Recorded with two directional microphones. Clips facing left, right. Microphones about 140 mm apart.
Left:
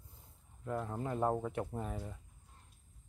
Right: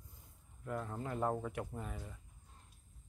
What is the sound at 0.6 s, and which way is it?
Speech, 20° left (ahead or behind).